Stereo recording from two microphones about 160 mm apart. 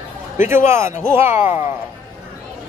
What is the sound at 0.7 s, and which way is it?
Speech, 15° right (ahead or behind).